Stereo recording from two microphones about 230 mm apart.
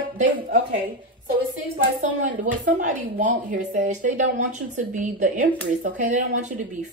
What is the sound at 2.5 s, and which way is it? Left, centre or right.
A woman's voice, right.